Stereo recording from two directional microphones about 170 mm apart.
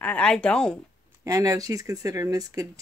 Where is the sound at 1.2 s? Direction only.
20° right (ahead or behind).